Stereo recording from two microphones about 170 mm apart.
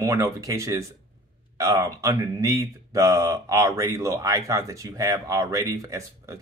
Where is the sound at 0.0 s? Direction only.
20° right (ahead or behind).